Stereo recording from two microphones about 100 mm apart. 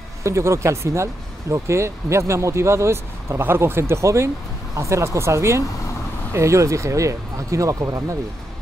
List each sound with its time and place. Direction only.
0.2 s speech: 30° right (ahead or behind)